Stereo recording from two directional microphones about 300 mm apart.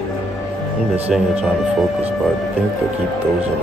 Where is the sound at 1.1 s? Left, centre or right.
Centre.